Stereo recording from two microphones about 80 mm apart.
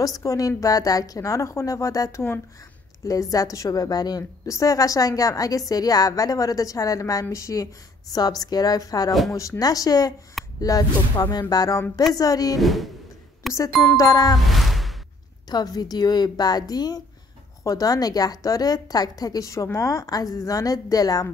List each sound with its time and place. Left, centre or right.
0.0 s a woman's voice: left
8.1 s a woman's voice: left
12.5 s speech: centre
13.4 s music: centre
13.9 s a woman's voice: left
14.4 s a sound: centre
15.5 s a woman's voice: left